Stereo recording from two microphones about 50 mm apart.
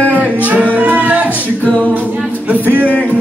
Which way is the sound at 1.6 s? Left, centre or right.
Left.